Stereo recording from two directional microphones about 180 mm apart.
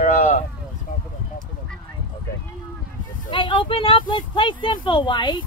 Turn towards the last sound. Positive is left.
turn(degrees=25)  # may be behind; listen again after turning